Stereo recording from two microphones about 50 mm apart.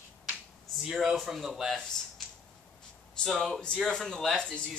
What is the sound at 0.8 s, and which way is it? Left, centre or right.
Speech, centre.